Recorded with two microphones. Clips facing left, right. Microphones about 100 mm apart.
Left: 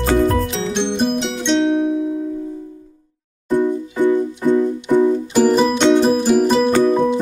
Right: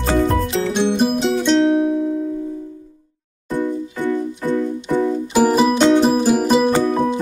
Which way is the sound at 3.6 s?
20° left (ahead or behind).